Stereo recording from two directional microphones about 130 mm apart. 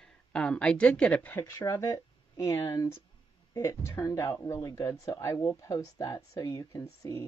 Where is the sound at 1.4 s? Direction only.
20° left (ahead or behind).